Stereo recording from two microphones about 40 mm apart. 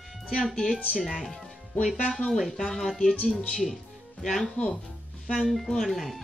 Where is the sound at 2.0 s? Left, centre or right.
Centre.